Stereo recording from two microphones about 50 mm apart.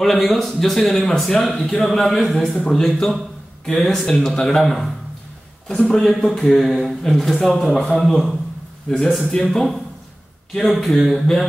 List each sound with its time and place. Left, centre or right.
0.0 s speech: centre
5.7 s a man's voice: centre
5.9 s speech: centre
6.3 s speech: centre
8.9 s a man's voice: centre
9.3 s speech: centre